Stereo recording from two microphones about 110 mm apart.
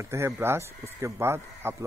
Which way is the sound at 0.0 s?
25° right (ahead or behind).